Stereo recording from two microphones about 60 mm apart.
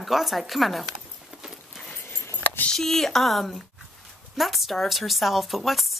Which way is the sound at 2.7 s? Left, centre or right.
Centre.